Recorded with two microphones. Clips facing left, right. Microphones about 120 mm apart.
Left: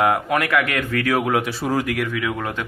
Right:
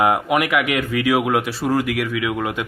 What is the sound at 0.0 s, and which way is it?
Speech, 15° right (ahead or behind).